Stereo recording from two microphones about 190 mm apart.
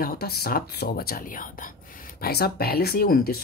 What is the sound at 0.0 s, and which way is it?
Speech, 55° left (ahead or behind).